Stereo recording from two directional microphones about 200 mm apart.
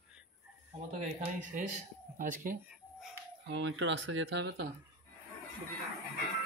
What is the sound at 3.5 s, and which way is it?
Speech, 65° right (ahead or behind).